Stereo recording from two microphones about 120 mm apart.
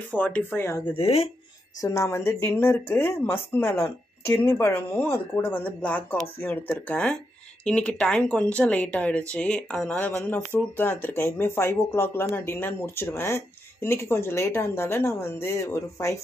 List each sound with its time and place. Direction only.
0.1 s speech: 15° left (ahead or behind)
0.8 s speech: 55° left (ahead or behind)
1.8 s speech: 25° left (ahead or behind)